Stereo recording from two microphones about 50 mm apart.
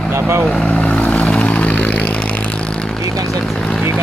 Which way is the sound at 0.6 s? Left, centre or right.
Left.